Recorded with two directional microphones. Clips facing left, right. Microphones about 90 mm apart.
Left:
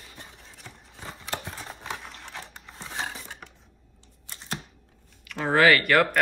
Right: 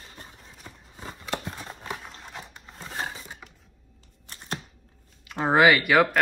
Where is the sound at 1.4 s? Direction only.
10° right (ahead or behind).